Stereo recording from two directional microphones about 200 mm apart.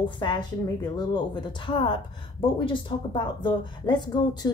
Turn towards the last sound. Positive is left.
turn(degrees=20)  # may be behind; listen again after turning